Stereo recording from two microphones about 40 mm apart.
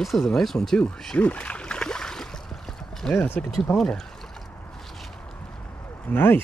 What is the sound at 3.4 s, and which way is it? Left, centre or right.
Speech, left.